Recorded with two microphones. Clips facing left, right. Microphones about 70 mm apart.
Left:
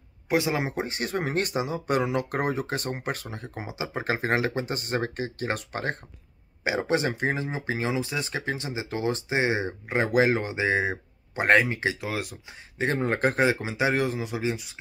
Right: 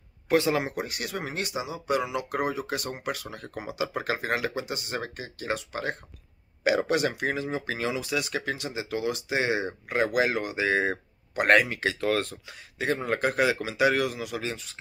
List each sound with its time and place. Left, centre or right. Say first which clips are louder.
0.3 s speech: right 1 dB; centre; by 3.3 s left
3.3 s speech: right 2 dB; left
6.6 s speech: right 1 dB; left
12.0 s speech: right 5 dB; centre
12.5 s speech: left 2 dB; left; by 14.8 s centre